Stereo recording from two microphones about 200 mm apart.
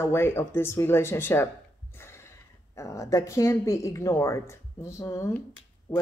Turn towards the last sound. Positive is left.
turn(degrees=15)  # may be behind; listen again after turning